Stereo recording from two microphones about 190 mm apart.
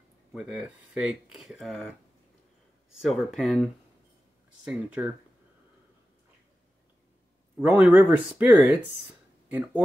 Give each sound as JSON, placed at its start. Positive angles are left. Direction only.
{"t": 0.3, "sound": "speech", "side_deg": -5}
{"t": 2.9, "sound": "speech", "side_deg": 0}
{"t": 7.5, "sound": "speech", "side_deg": -10}